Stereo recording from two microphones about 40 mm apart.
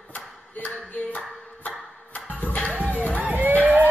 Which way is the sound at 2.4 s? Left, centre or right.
Left.